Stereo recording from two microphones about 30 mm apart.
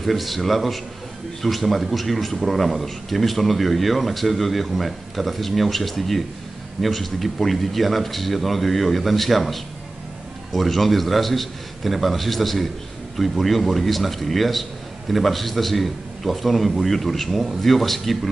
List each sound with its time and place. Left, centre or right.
0.0 s a man's voice: centre